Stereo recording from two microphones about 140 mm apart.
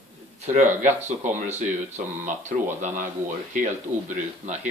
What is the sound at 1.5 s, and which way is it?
Speech, 60° right (ahead or behind).